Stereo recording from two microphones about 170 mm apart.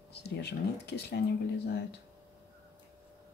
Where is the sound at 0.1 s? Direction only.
75° left (ahead or behind).